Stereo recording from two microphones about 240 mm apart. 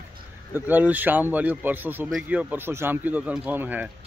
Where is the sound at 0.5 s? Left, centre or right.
Centre.